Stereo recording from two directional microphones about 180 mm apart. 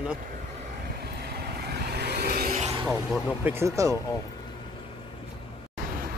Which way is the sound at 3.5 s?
15° right (ahead or behind).